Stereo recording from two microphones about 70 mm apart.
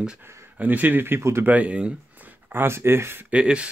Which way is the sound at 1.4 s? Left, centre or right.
Right.